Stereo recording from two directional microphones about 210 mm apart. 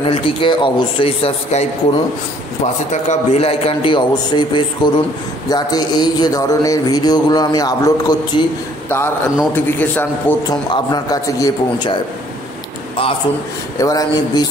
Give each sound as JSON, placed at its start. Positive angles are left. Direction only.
{"t": 0.0, "sound": "a man's voice", "side_deg": 25}
{"t": 13.7, "sound": "a man's voice", "side_deg": 15}